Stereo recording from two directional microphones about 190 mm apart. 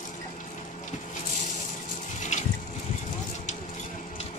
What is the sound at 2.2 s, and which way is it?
Water, 40° left (ahead or behind).